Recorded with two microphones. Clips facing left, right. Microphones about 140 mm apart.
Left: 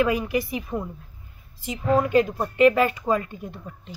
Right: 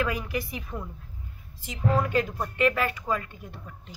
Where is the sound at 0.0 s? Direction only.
15° left (ahead or behind).